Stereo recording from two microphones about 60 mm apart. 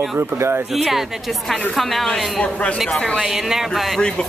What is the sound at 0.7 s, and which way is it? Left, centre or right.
Speech, centre.